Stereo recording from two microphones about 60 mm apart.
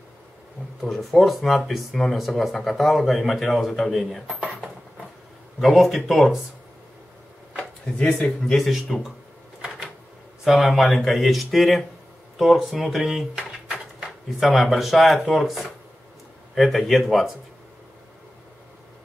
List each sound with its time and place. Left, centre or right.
0.8 s speech: centre
5.6 s speech: centre
7.8 s speech: centre
8.5 s speech: centre
10.4 s speech: centre
13.3 s a sound: centre
14.4 s speech: centre